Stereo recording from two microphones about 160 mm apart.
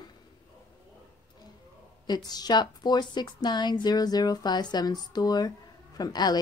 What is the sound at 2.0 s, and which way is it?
A woman's voice, 25° left (ahead or behind).